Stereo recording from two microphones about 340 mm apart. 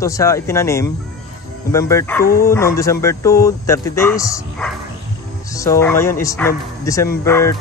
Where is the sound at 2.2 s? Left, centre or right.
Left.